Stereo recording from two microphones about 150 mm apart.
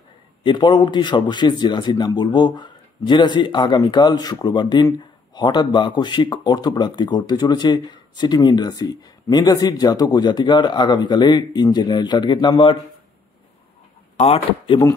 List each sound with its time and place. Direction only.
0.4 s a man's voice: 30° left (ahead or behind)
14.1 s speech: 40° left (ahead or behind)